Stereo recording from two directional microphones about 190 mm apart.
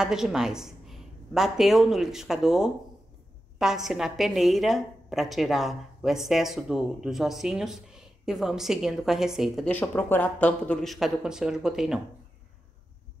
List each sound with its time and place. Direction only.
0.0 s a woman's voice: 5° right (ahead or behind)